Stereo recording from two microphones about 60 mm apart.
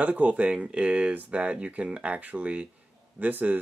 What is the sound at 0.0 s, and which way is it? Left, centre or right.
Speech, right.